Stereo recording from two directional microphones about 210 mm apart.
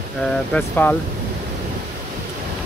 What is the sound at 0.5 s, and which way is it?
Speech, 10° left (ahead or behind).